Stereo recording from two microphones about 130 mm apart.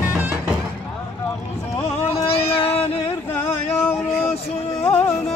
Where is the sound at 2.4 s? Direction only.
50° left (ahead or behind).